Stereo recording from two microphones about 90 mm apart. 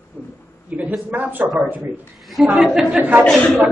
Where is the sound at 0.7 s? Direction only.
15° right (ahead or behind).